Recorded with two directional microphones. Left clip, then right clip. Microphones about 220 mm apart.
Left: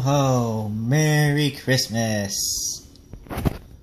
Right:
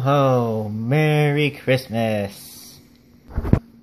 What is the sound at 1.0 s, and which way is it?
Speech, 25° right (ahead or behind).